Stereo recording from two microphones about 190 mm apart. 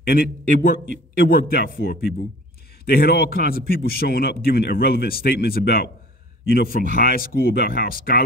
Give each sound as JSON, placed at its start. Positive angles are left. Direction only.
{"t": 0.0, "sound": "a man's voice", "side_deg": 50}
{"t": 1.3, "sound": "a man's voice", "side_deg": 55}